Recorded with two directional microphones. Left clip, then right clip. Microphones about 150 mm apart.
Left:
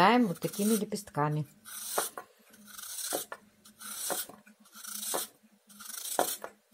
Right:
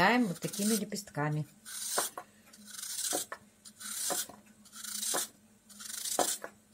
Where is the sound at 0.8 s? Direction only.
40° left (ahead or behind).